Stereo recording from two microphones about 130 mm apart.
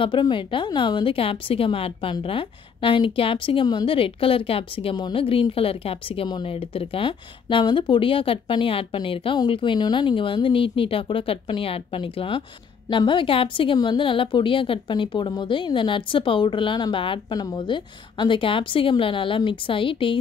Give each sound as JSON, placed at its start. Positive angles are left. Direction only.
{"t": 0.0, "sound": "a woman's voice", "side_deg": 40}